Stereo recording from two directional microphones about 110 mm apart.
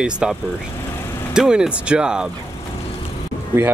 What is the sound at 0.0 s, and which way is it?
Speech, 5° right (ahead or behind).